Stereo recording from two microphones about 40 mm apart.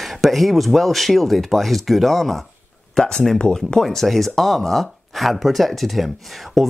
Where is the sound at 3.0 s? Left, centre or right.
Centre.